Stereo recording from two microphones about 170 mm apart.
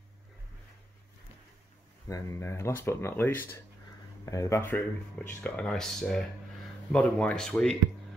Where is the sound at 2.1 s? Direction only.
15° left (ahead or behind).